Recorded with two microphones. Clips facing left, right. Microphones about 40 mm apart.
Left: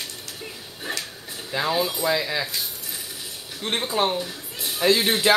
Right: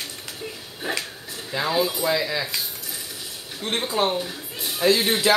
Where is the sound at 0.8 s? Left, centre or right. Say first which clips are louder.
Right 3 dB; centre.